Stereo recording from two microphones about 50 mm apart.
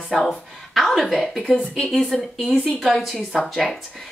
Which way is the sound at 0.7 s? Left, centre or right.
Centre.